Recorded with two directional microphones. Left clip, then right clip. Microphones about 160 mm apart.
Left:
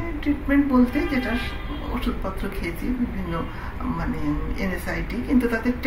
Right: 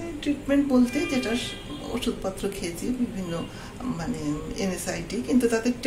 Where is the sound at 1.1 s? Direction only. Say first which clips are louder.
Left 1 dB; 5° right (ahead or behind).